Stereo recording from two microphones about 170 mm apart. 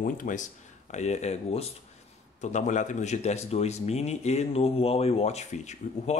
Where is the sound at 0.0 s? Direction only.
50° left (ahead or behind).